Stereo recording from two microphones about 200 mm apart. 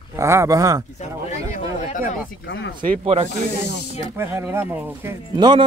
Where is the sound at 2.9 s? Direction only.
30° right (ahead or behind).